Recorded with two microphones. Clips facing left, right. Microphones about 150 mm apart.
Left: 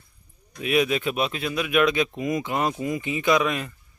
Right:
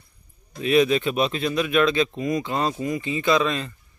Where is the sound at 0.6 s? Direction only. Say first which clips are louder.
Right 4 dB; 10° left (ahead or behind).